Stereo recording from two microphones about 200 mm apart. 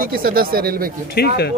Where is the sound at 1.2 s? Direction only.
50° left (ahead or behind).